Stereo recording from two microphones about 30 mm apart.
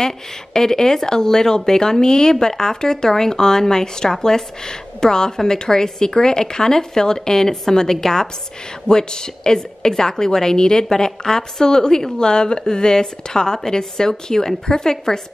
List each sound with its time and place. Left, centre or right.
0.0 s a woman's voice: centre